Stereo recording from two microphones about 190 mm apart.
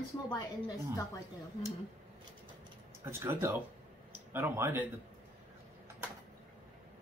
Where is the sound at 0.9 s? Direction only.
15° left (ahead or behind).